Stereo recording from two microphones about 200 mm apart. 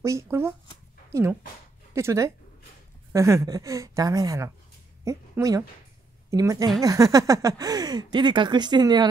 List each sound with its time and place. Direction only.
0.0 s a woman's voice: 15° right (ahead or behind)